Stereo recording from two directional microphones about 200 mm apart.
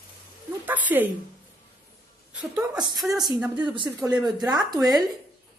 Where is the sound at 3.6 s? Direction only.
25° right (ahead or behind).